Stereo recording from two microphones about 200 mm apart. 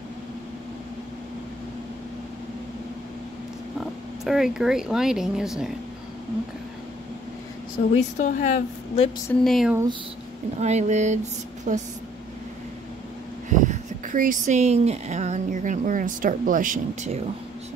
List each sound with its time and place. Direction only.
4.2 s speech: centre (ahead or behind)
8.0 s speech: 40° left (ahead or behind)
9.3 s speech: centre (ahead or behind)
10.6 s speech: 35° right (ahead or behind)
13.5 s speech: 40° right (ahead or behind)